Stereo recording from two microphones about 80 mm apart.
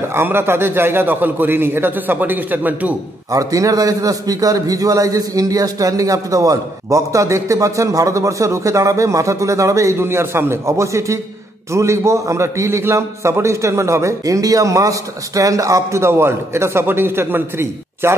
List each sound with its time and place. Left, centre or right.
0.1 s a man's voice: right
3.3 s a man's voice: right